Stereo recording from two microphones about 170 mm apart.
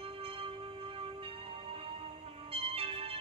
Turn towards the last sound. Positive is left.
turn(degrees=-35)  # may be behind; listen again after turning